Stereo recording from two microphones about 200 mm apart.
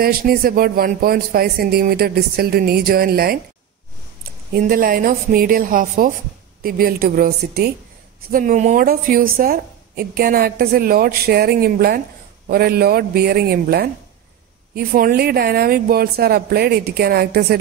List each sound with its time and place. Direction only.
0.0 s a woman's voice: 45° right (ahead or behind)
8.3 s a woman's voice: 40° right (ahead or behind)